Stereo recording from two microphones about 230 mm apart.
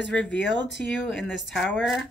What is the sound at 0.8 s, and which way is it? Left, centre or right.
Speech, centre.